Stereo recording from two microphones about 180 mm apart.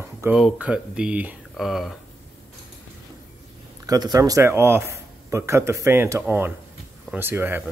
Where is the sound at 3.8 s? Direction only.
20° right (ahead or behind).